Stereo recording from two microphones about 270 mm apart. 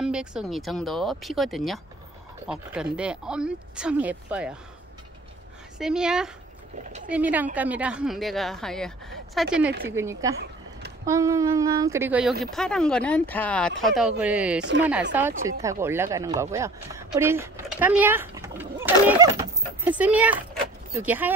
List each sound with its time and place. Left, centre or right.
0.0 s speech: centre
5.8 s speech: centre
10.3 s a sound: right
11.1 s speech: centre
14.6 s speech: right
15.1 s speech: centre